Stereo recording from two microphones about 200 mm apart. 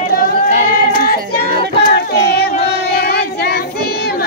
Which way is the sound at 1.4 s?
50° right (ahead or behind).